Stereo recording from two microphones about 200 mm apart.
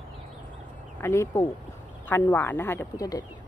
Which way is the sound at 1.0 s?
15° left (ahead or behind).